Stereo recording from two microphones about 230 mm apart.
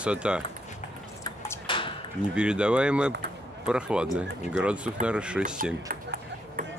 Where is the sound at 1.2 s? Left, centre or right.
Centre.